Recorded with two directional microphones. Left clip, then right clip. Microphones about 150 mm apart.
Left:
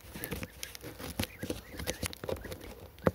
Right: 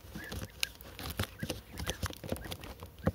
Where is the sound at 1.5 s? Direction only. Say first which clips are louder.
Left 1 dB; 15° left (ahead or behind).